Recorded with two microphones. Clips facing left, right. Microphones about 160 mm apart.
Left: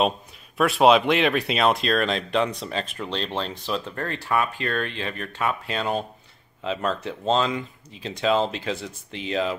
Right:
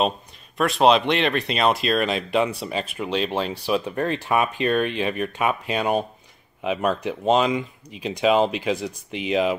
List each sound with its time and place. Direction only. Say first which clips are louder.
0.6 s speech: even; 5° left (ahead or behind); by 9.6 s 15° right (ahead or behind)